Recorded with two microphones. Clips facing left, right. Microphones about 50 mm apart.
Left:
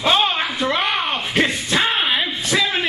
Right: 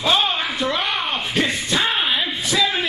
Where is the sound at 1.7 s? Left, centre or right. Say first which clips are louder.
Left 1 dB; centre.